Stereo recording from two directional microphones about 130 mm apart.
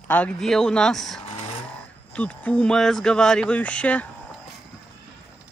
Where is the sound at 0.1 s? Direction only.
10° left (ahead or behind).